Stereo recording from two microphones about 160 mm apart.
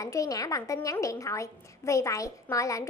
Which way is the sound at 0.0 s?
20° left (ahead or behind).